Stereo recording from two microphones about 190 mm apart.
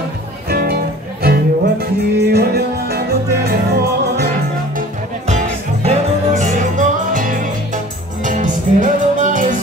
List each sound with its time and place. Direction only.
0.5 s music: 55° right (ahead or behind)
4.7 s music: 35° right (ahead or behind)